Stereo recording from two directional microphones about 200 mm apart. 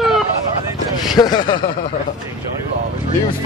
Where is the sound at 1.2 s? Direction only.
20° left (ahead or behind).